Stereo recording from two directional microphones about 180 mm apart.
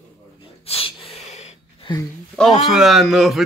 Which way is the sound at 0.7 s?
30° left (ahead or behind).